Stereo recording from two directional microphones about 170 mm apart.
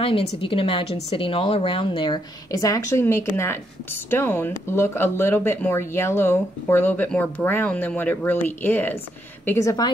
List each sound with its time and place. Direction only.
0.0 s a woman's voice: 30° left (ahead or behind)